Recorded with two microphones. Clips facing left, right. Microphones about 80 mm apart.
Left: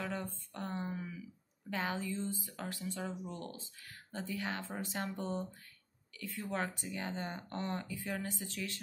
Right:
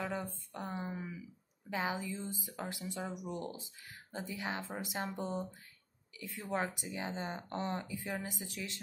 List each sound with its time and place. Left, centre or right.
0.0 s speech: centre